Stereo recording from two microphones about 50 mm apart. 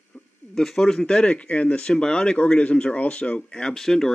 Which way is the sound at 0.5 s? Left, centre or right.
Centre.